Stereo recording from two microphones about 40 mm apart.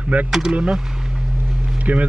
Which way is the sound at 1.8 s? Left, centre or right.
Right.